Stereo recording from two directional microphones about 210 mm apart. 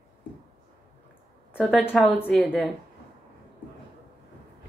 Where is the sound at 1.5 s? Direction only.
Centre (ahead or behind).